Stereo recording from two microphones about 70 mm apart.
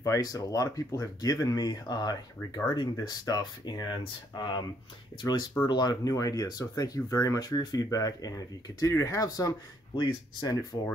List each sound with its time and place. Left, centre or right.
0.0 s speech: left
5.7 s speech: left
9.9 s speech: left